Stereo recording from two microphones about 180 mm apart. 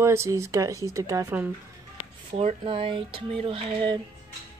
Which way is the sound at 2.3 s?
30° right (ahead or behind).